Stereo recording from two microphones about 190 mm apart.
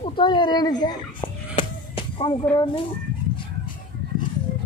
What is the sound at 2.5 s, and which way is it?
Speech, 25° left (ahead or behind).